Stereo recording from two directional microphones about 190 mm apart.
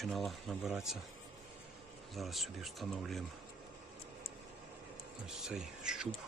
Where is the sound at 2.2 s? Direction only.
Centre (ahead or behind).